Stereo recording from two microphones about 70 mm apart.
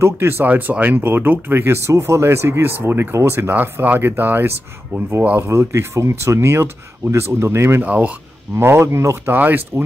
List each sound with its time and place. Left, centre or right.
0.0 s speech: right
1.9 s speech: right
5.5 s speech: right
7.8 s speech: right
8.5 s speech: right
9.3 s speech: right